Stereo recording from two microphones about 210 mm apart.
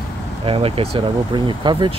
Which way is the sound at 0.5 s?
25° right (ahead or behind).